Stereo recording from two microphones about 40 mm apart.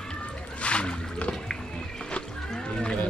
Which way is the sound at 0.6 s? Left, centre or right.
Left.